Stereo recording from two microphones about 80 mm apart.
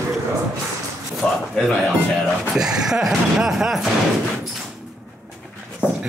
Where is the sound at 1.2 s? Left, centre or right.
Centre.